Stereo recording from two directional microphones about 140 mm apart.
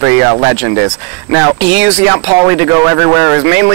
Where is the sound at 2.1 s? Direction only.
25° right (ahead or behind).